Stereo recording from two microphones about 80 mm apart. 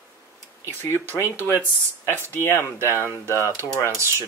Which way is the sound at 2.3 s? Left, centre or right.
Left.